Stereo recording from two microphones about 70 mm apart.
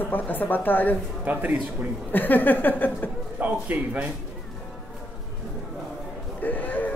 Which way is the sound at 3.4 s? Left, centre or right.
Right.